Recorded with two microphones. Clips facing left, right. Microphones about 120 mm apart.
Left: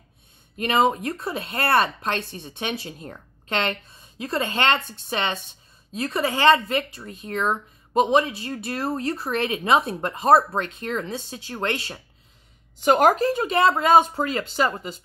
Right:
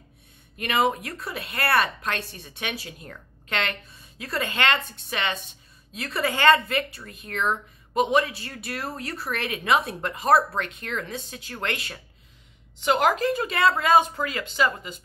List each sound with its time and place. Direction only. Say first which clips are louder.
0.6 s speech: left 3 dB; 30° left (ahead or behind)
12.8 s speech: left 4 dB; 45° left (ahead or behind)